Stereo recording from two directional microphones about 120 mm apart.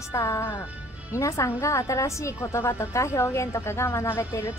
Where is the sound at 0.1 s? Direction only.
25° left (ahead or behind).